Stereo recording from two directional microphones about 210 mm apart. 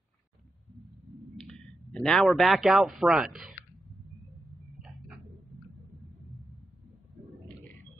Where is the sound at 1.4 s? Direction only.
Centre (ahead or behind).